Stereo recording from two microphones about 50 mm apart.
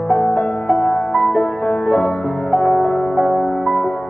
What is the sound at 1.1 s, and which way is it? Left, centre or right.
Music, centre.